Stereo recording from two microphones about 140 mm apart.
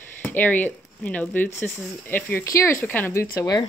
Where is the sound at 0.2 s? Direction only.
10° left (ahead or behind).